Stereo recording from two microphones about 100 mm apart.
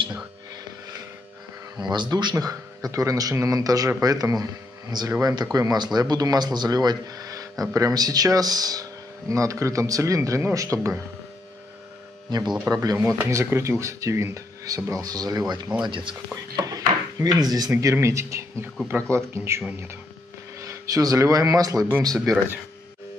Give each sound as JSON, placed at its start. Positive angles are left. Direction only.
{"t": 1.8, "sound": "speech", "side_deg": -45}
{"t": 2.3, "sound": "speech", "side_deg": -35}
{"t": 12.3, "sound": "speech", "side_deg": -45}
{"t": 12.6, "sound": "speech", "side_deg": -35}
{"t": 15.8, "sound": "speech", "side_deg": -55}
{"t": 16.6, "sound": "dishes", "side_deg": -40}
{"t": 17.6, "sound": "speech", "side_deg": -30}
{"t": 20.6, "sound": "speech", "side_deg": -35}
{"t": 22.1, "sound": "speech", "side_deg": 0}